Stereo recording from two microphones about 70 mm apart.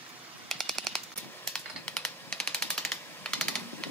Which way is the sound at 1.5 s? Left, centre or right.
Centre.